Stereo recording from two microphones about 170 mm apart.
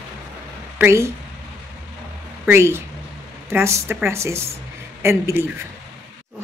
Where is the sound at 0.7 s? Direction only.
15° right (ahead or behind).